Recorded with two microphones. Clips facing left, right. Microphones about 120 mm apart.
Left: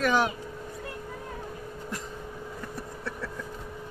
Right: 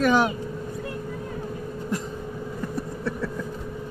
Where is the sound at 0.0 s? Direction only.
15° right (ahead or behind).